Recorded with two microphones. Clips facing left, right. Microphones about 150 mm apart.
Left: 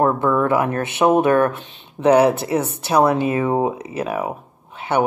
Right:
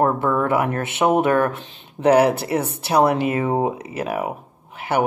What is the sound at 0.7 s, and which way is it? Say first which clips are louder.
Speech: left 2 dB; 25° right (ahead or behind).